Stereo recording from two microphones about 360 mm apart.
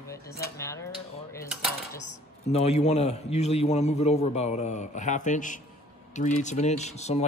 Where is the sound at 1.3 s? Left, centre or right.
Centre.